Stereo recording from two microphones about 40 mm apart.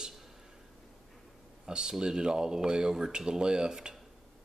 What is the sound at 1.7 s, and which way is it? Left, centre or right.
Speech, centre.